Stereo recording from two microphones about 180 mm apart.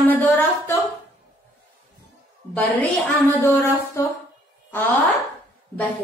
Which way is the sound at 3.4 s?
15° left (ahead or behind).